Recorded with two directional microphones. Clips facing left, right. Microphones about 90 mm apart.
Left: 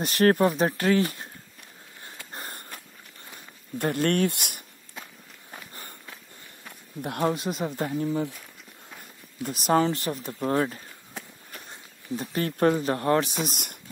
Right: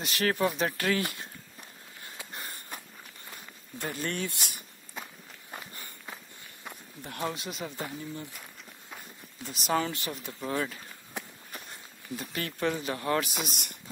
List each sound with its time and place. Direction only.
0.0 s speech: 45° left (ahead or behind)
0.7 s speech: 20° left (ahead or behind)
2.3 s a sound: 40° left (ahead or behind)
3.7 s speech: 60° left (ahead or behind)
7.0 s speech: 55° left (ahead or behind)
9.7 s speech: 35° left (ahead or behind)
12.2 s speech: 35° left (ahead or behind)
13.3 s speech: centre (ahead or behind)